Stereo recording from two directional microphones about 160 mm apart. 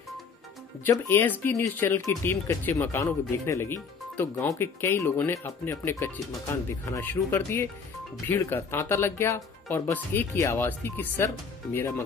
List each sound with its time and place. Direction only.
0.8 s speech: 15° left (ahead or behind)